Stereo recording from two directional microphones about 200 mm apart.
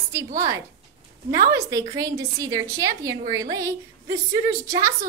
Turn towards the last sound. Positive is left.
turn(degrees=-15)  # may be behind; listen again after turning